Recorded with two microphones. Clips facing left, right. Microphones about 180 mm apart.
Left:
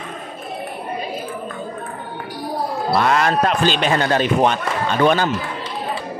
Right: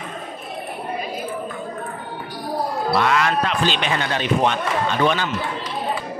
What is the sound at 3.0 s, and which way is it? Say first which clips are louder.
A man's voice: left 4 dB; 35° left (ahead or behind).